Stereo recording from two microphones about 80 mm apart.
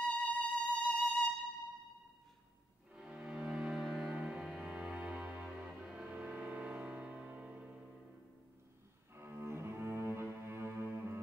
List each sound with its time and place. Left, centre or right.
0.0 s music: centre
2.9 s music: centre
9.1 s cello: right